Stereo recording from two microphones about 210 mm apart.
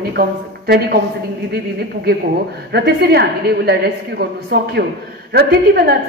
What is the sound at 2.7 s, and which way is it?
Speech, 50° right (ahead or behind).